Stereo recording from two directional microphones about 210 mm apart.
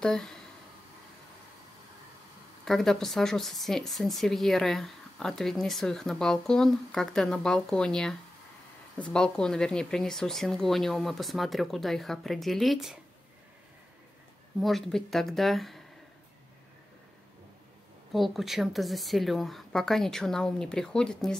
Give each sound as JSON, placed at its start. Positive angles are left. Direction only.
{"t": 0.0, "sound": "speech", "side_deg": 0}
{"t": 2.6, "sound": "speech", "side_deg": 0}
{"t": 14.6, "sound": "speech", "side_deg": 0}
{"t": 18.1, "sound": "speech", "side_deg": 0}